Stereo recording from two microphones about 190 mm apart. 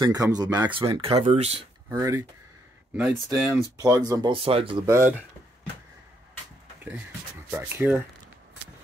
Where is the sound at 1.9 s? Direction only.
15° right (ahead or behind).